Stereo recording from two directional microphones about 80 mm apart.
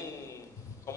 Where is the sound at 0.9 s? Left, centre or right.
Left.